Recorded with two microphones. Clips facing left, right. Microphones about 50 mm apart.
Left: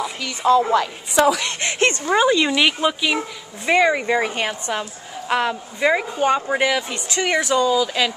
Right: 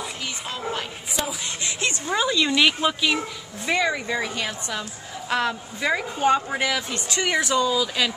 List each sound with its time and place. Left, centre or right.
0.4 s speech: left
1.6 s speech: left
2.0 s speech: left
2.4 s speech: centre
3.6 s speech: left
5.3 s speech: centre
6.1 s speech: centre
7.6 s speech: centre